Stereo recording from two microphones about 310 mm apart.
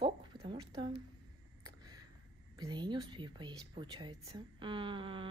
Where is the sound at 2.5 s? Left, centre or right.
Centre.